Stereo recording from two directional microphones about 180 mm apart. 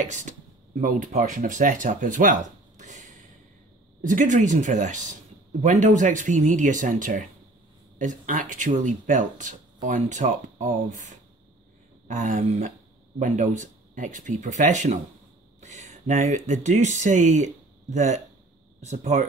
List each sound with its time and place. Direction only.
0.0 s speech: 40° right (ahead or behind)
2.8 s a sound: 45° right (ahead or behind)
4.0 s speech: 45° right (ahead or behind)